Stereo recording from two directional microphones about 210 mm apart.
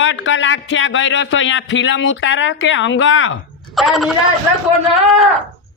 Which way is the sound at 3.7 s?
Centre (ahead or behind).